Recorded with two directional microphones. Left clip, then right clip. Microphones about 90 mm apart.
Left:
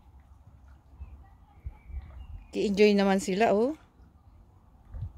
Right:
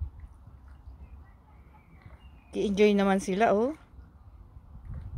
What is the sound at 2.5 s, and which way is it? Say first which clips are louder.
Speech: left 1 dB; 45° left (ahead or behind).